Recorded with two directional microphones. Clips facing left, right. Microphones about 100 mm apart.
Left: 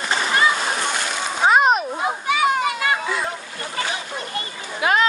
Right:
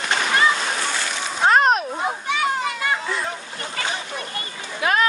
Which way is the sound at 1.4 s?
5° left (ahead or behind).